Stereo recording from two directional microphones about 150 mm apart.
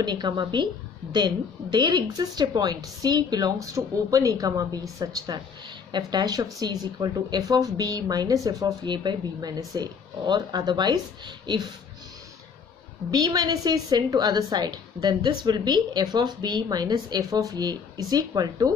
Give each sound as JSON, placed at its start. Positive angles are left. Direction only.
{"t": 0.0, "sound": "speech", "side_deg": -30}
{"t": 13.1, "sound": "speech", "side_deg": -25}